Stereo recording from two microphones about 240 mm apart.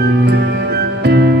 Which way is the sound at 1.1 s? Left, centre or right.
Right.